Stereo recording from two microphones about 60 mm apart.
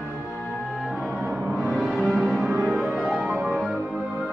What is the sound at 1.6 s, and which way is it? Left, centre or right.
Music, centre.